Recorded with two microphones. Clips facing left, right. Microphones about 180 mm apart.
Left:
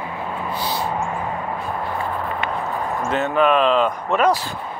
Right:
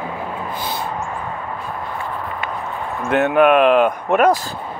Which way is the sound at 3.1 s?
60° right (ahead or behind).